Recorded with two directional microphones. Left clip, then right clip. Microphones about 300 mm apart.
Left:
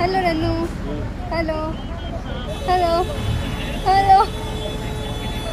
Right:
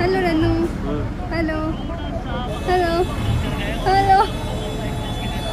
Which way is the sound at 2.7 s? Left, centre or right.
Centre.